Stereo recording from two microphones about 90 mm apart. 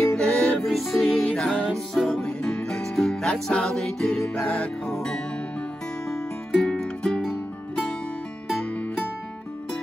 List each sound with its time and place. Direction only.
0.1 s music: 10° left (ahead or behind)
6.0 s music: 5° left (ahead or behind)